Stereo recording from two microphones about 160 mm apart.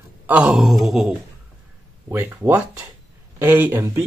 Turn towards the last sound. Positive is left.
turn(degrees=-15)  # may be behind; listen again after turning